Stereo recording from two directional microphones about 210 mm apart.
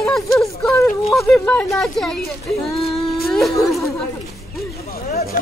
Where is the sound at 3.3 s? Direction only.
Centre (ahead or behind).